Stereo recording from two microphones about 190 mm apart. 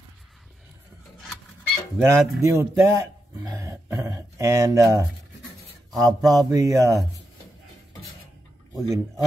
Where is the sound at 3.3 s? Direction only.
15° right (ahead or behind).